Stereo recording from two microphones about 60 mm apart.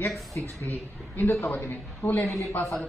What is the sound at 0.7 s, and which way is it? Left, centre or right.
A woman's voice, left.